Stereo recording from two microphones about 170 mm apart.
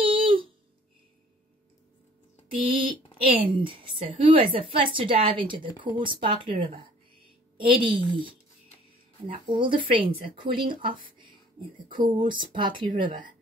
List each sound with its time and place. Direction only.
0.0 s a sound: 30° right (ahead or behind)
2.9 s a woman's voice: 30° right (ahead or behind)
9.5 s a woman's voice: 30° right (ahead or behind)